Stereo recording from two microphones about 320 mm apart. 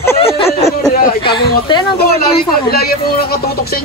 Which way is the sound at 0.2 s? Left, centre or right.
Centre.